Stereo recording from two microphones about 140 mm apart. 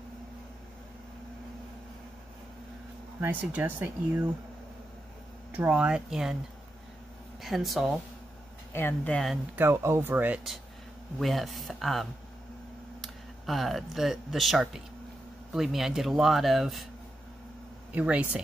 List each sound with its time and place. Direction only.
3.2 s speech: 15° right (ahead or behind)
5.5 s speech: 10° right (ahead or behind)
7.4 s speech: centre (ahead or behind)
8.7 s speech: 15° left (ahead or behind)
9.6 s speech: 15° right (ahead or behind)
11.1 s speech: centre (ahead or behind)
17.9 s speech: 10° right (ahead or behind)